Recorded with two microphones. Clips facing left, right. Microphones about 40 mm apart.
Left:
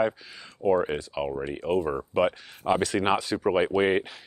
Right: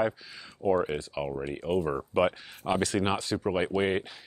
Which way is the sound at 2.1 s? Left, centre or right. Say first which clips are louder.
Left 1 dB; centre.